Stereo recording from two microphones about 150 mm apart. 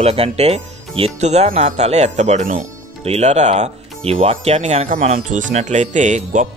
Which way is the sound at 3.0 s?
45° right (ahead or behind).